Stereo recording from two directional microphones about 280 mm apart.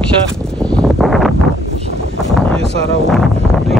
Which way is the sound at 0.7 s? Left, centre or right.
Centre.